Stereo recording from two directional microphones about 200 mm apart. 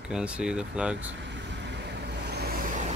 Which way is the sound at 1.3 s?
60° right (ahead or behind).